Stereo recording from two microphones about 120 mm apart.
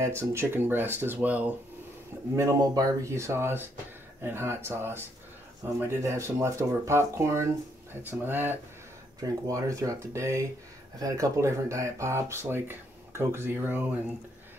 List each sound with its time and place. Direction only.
0.2 s speech: 20° right (ahead or behind)
2.3 s speech: 30° right (ahead or behind)
9.2 s speech: 30° right (ahead or behind)